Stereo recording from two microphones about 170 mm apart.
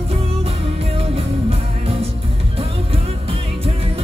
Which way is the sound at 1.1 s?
35° right (ahead or behind).